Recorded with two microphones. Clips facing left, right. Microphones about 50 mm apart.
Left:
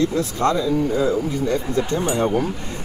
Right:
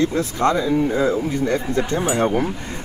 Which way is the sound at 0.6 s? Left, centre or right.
Right.